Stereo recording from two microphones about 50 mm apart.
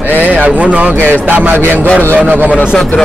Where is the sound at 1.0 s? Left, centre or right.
Right.